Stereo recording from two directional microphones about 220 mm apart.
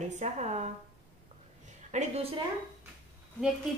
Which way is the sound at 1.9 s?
30° right (ahead or behind).